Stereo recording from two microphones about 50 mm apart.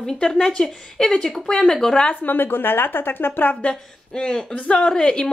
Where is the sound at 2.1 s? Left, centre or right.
Left.